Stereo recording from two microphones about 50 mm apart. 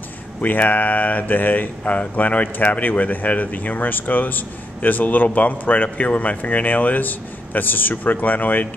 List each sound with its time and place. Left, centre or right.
0.4 s speech: left